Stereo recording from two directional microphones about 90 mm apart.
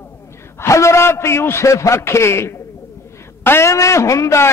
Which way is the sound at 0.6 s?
30° left (ahead or behind).